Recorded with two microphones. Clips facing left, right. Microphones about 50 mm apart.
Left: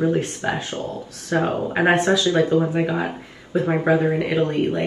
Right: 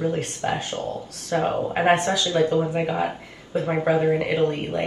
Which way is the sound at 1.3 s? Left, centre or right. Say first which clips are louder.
Left 1 dB; left.